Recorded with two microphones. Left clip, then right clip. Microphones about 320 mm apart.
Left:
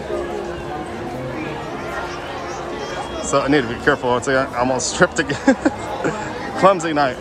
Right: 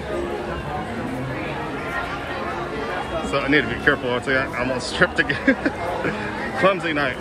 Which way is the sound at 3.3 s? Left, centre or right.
Centre.